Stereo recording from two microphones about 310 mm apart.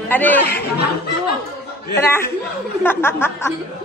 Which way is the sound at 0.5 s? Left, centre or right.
Left.